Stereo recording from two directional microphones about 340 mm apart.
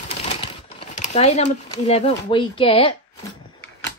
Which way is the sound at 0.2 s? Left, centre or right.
Centre.